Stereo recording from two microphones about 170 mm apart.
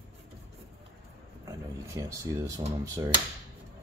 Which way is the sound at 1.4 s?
20° right (ahead or behind).